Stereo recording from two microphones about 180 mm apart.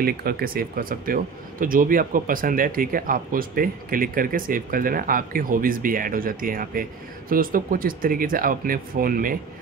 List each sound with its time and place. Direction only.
0.0 s speech: 55° right (ahead or behind)